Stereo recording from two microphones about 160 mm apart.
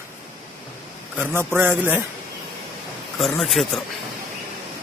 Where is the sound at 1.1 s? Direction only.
15° right (ahead or behind).